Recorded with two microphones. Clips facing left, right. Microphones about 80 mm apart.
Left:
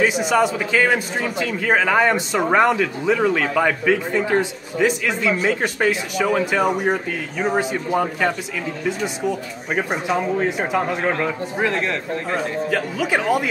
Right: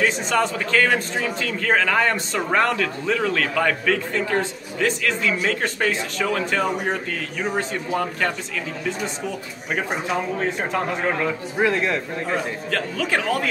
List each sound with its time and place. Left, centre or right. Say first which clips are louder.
0.0 s a man's voice: left 3 dB; centre
12.6 s a man's voice: left 3 dB; centre